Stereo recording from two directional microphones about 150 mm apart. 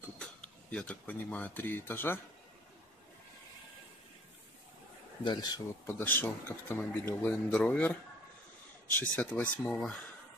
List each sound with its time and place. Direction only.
0.2 s speech: 5° left (ahead or behind)
5.2 s speech: 30° left (ahead or behind)
5.9 s a man's voice: 15° left (ahead or behind)